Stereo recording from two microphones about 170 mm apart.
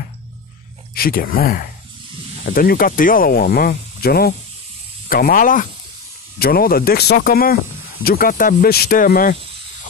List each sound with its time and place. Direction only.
0.9 s speech: 60° left (ahead or behind)